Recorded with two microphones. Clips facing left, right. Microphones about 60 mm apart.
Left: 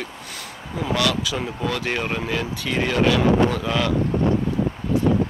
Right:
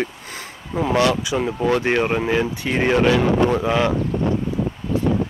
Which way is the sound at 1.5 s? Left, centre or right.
Right.